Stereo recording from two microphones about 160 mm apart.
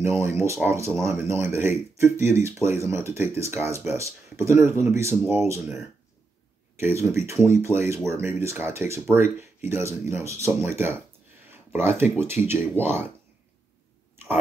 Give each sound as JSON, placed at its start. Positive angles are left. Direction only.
{"t": 0.0, "sound": "speech", "side_deg": -15}
{"t": 6.8, "sound": "speech", "side_deg": -15}
{"t": 11.5, "sound": "a sound", "side_deg": -15}
{"t": 12.0, "sound": "speech", "side_deg": -15}